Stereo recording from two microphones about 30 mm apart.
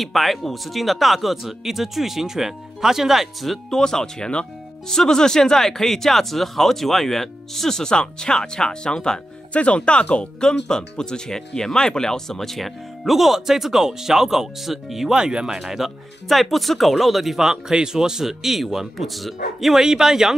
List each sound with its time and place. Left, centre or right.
0.0 s speech: centre
3.7 s speech: left
7.9 s speech: left
9.5 s speech: left
10.4 s speech: left; by 15.1 s centre
15.1 s speech: right
16.3 s speech: centre
17.4 s speech: right; by 19.8 s centre
19.8 s speech: centre